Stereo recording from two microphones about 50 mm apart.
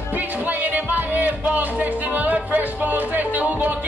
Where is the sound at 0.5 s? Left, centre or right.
Right.